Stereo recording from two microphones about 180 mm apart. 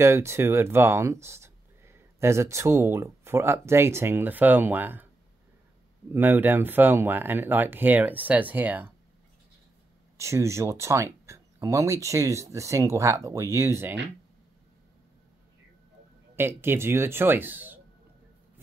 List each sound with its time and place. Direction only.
0.0 s speech: 15° right (ahead or behind)
6.1 s speech: 10° right (ahead or behind)
10.1 s speech: 15° right (ahead or behind)
16.3 s speech: 10° right (ahead or behind)